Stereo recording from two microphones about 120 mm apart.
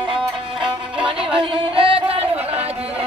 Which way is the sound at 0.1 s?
45° right (ahead or behind).